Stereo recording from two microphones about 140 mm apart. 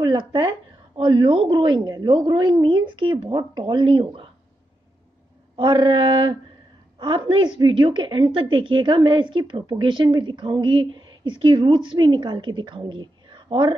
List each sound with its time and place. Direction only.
0.0 s a sound: 35° right (ahead or behind)
0.9 s a woman's voice: 35° right (ahead or behind)
5.6 s a woman's voice: 35° right (ahead or behind)